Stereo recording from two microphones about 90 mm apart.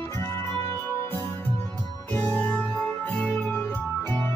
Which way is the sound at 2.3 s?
15° left (ahead or behind).